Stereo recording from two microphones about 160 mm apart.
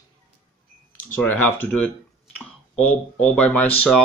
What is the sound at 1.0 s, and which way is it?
Speech, 10° left (ahead or behind).